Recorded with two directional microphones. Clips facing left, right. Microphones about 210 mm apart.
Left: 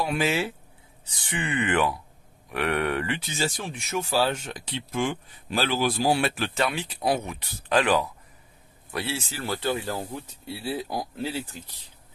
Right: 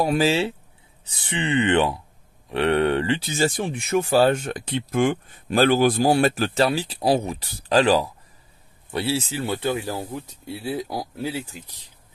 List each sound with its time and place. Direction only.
0.0 s speech: 35° right (ahead or behind)
3.3 s speech: 50° right (ahead or behind); by 11.4 s 10° right (ahead or behind)